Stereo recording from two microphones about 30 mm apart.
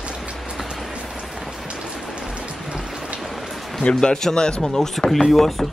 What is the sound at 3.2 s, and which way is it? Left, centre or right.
Rain, centre.